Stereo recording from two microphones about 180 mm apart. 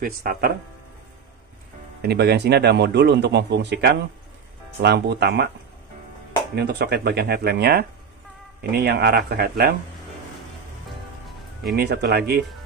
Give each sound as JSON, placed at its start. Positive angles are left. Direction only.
{"t": 0.0, "sound": "speech", "side_deg": -55}
{"t": 2.0, "sound": "a man's voice", "side_deg": -65}
{"t": 6.5, "sound": "speech", "side_deg": -70}
{"t": 11.7, "sound": "speech", "side_deg": -65}